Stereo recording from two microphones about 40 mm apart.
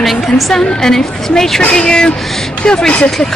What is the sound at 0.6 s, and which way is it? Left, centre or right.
A woman's voice, centre.